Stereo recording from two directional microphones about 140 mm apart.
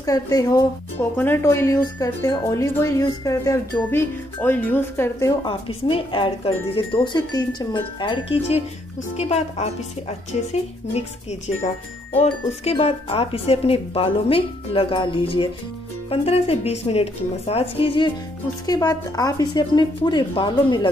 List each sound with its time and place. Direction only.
0.0 s speech: 25° left (ahead or behind)
0.9 s speech: 15° left (ahead or behind)
5.4 s speech: 40° left (ahead or behind)
9.1 s speech: 50° left (ahead or behind)
18.7 s speech: 25° left (ahead or behind)